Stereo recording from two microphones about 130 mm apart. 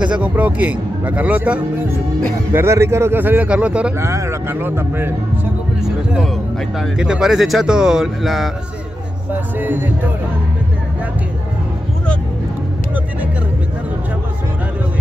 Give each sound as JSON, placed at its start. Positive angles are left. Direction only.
{"t": 0.0, "sound": "speech", "side_deg": -10}
{"t": 4.0, "sound": "speech", "side_deg": -20}
{"t": 7.0, "sound": "speech", "side_deg": -5}
{"t": 9.6, "sound": "speech", "side_deg": -15}